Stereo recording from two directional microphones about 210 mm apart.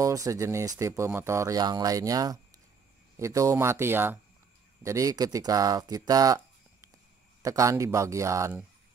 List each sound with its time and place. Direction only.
0.0 s speech: 15° right (ahead or behind)